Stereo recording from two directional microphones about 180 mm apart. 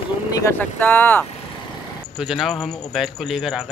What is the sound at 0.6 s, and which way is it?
Speech, 10° left (ahead or behind).